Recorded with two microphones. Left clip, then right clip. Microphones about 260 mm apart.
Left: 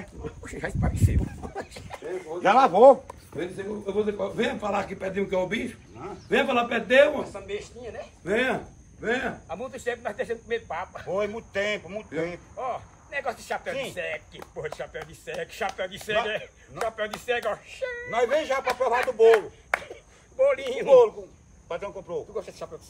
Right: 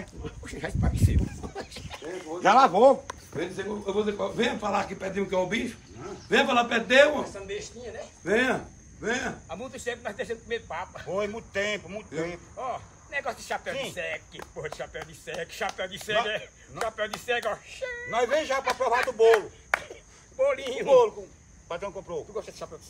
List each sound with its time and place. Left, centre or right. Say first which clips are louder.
0.0 s a man's voice: left 2 dB; centre
7.4 s a sound: left 1 dB; left
8.2 s speech: right 1 dB; right
9.0 s speech: left 2 dB; right
9.5 s speech: left 3 dB; centre